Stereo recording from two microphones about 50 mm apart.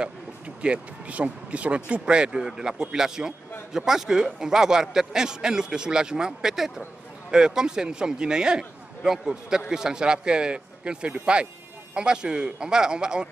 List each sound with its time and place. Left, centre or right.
0.6 s speech: right